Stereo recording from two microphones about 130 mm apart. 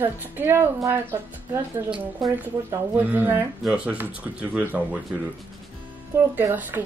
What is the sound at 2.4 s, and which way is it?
Speech, 15° right (ahead or behind).